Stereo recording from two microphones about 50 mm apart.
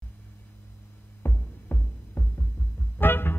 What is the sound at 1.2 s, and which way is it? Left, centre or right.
Music, left.